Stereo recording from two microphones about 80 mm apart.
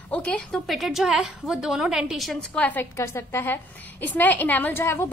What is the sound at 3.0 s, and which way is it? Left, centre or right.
A woman's voice, left.